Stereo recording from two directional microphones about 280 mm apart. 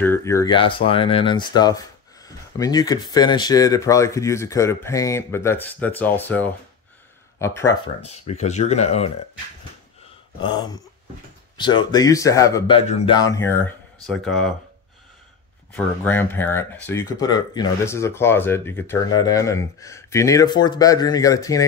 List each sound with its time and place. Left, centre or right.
0.0 s speech: centre
8.0 s speech: left
10.4 s speech: centre
15.7 s speech: centre